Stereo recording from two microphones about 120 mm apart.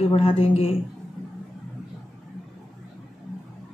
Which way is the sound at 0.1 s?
50° left (ahead or behind).